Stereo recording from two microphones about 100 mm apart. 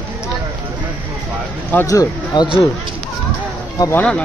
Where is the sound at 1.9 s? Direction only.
35° left (ahead or behind).